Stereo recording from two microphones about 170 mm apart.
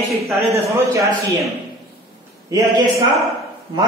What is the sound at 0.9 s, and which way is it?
Speech, 20° right (ahead or behind).